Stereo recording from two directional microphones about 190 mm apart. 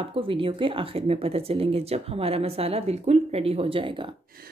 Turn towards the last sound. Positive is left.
turn(degrees=-25)  # may be behind; listen again after turning